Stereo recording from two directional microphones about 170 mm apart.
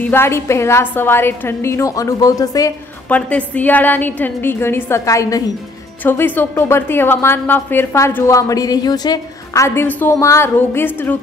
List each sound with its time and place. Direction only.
0.0 s a woman's voice: 15° left (ahead or behind)
3.1 s a woman's voice: 10° left (ahead or behind)